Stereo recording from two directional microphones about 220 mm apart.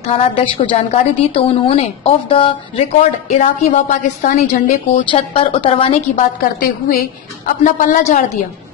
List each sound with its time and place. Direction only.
0.0 s a woman's voice: 30° left (ahead or behind)
5.1 s a woman's voice: 25° left (ahead or behind)